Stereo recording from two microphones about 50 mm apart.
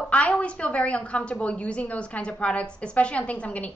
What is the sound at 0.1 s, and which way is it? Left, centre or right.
A woman's voice, left.